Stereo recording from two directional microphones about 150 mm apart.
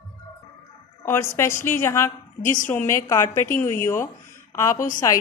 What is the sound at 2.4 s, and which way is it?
Speech, 60° left (ahead or behind).